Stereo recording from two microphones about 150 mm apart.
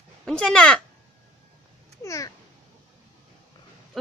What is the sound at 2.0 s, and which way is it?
Babbling, 20° left (ahead or behind).